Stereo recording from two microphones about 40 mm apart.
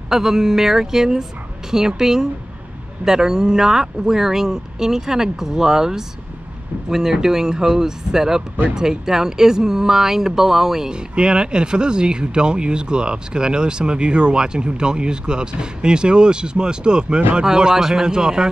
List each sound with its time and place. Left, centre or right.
0.1 s speech: centre
11.1 s speech: right